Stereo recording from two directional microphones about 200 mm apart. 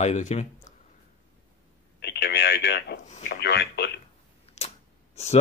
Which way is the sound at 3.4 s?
55° left (ahead or behind).